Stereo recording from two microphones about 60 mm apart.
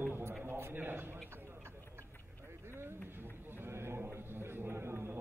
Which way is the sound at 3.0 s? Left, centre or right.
Right.